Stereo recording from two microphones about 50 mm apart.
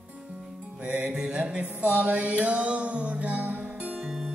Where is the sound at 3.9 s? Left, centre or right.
Centre.